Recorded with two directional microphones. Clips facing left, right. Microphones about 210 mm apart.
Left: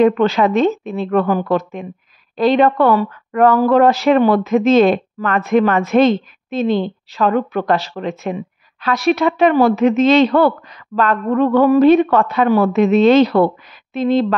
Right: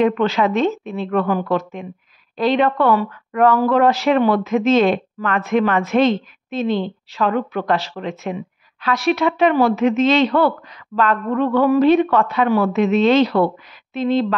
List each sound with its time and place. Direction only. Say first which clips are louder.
0.0 s speech: left 4 dB; 40° left (ahead or behind)